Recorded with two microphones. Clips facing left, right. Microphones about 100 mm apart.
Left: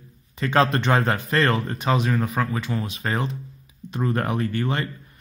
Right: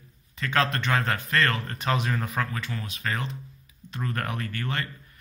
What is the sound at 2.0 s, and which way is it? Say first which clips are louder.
Speech: left 5 dB; 5° left (ahead or behind).